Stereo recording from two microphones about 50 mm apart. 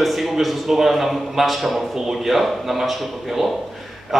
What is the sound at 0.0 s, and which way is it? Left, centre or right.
A man's voice, centre.